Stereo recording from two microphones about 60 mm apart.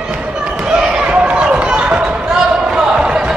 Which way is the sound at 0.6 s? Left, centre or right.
Centre.